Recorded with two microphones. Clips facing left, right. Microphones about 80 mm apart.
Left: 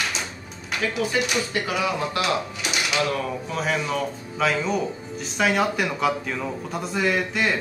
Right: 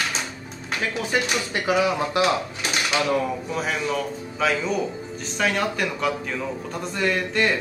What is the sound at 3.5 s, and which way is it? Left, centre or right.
Speech, centre.